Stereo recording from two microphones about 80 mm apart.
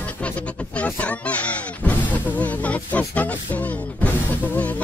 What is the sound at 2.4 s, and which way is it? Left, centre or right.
Music, centre.